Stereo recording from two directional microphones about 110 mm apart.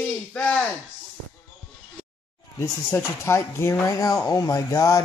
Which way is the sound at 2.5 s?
25° left (ahead or behind).